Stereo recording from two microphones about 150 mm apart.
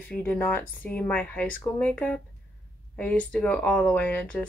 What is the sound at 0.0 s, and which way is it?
Speech, 10° left (ahead or behind).